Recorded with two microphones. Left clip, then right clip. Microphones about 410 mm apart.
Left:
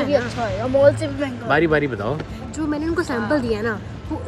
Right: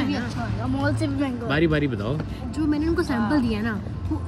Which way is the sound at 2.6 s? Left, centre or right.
Centre.